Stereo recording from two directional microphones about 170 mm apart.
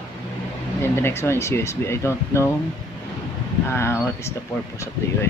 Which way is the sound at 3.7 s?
15° left (ahead or behind).